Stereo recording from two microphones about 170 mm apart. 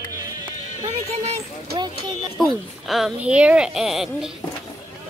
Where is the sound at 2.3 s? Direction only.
Centre (ahead or behind).